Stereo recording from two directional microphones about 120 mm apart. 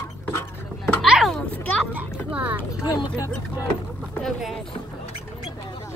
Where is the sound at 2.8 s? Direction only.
30° left (ahead or behind).